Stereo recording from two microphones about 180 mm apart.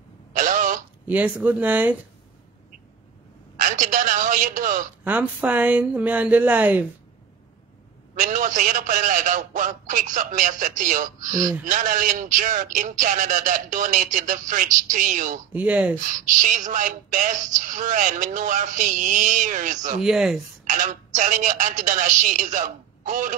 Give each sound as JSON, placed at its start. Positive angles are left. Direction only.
{"t": 0.3, "sound": "throat clearing", "side_deg": -45}
{"t": 1.0, "sound": "a woman's voice", "side_deg": -10}
{"t": 3.5, "sound": "a sound", "side_deg": -45}
{"t": 5.0, "sound": "a woman's voice", "side_deg": -10}
{"t": 8.1, "sound": "speech", "side_deg": -45}
{"t": 11.3, "sound": "a woman's voice", "side_deg": -20}
{"t": 11.6, "sound": "speech", "side_deg": -45}
{"t": 15.5, "sound": "a woman's voice", "side_deg": -10}
{"t": 16.4, "sound": "speech", "side_deg": -45}
{"t": 20.0, "sound": "speech", "side_deg": -5}
{"t": 20.6, "sound": "speech", "side_deg": -45}